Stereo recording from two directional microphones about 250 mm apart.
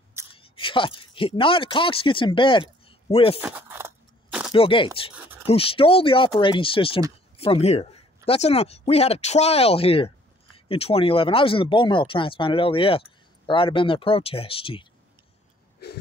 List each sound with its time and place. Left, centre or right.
0.4 s speech: left
3.3 s a sound: centre
4.5 s speech: left